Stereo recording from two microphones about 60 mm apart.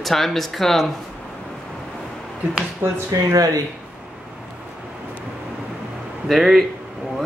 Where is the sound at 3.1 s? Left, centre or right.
Right.